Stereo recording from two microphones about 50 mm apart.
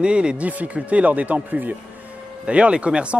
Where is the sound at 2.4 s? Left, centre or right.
Right.